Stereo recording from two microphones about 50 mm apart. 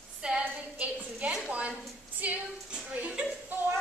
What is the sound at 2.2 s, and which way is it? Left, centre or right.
Female singing, right.